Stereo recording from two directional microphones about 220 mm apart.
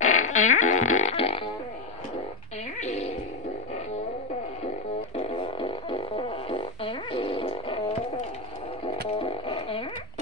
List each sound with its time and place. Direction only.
0.0 s fart: 35° left (ahead or behind)
2.8 s a sound: 30° left (ahead or behind)
5.1 s fart: 25° left (ahead or behind)
8.8 s music: 25° left (ahead or behind)